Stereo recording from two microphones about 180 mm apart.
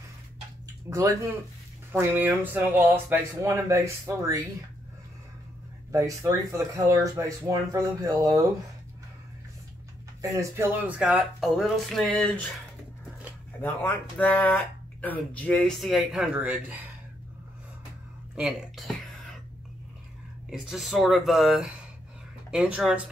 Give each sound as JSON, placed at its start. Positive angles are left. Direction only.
{"t": 0.9, "sound": "speech", "side_deg": -15}
{"t": 5.9, "sound": "speech", "side_deg": -20}
{"t": 10.2, "sound": "speech", "side_deg": -15}
{"t": 13.5, "sound": "speech", "side_deg": 10}
{"t": 18.3, "sound": "speech", "side_deg": 0}
{"t": 20.4, "sound": "speech", "side_deg": 0}